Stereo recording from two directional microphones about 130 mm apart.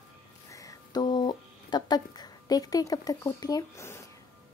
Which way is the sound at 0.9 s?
35° left (ahead or behind).